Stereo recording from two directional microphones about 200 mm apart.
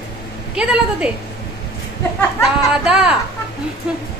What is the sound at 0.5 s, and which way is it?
Speech, 5° right (ahead or behind).